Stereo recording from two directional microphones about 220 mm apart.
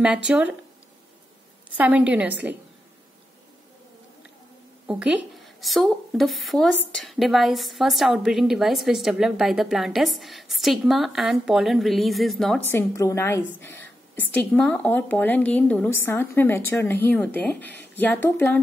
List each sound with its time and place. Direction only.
0.0 s a woman's voice: 5° right (ahead or behind)
1.8 s a woman's voice: 5° right (ahead or behind)
4.8 s a woman's voice: 5° right (ahead or behind)